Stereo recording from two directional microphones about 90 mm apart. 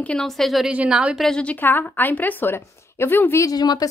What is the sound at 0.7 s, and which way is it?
Speech, 10° right (ahead or behind).